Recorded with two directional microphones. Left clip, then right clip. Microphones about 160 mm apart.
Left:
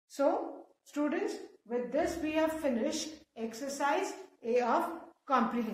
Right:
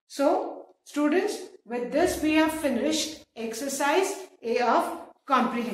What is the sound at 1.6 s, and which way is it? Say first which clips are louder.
A woman's voice: right 7 dB; 25° left (ahead or behind).